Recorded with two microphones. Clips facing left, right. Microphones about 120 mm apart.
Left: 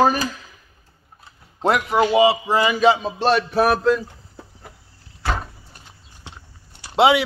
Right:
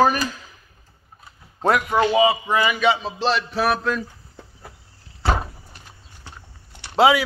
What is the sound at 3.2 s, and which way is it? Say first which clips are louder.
Music: left 4 dB; 50° left (ahead or behind).